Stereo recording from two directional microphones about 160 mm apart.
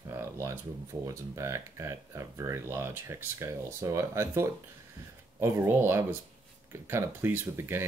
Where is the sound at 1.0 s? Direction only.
20° right (ahead or behind).